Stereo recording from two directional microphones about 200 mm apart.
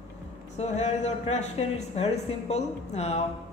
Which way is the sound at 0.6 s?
35° left (ahead or behind).